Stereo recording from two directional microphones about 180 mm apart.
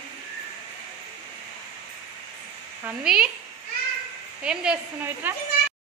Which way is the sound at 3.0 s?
5° right (ahead or behind).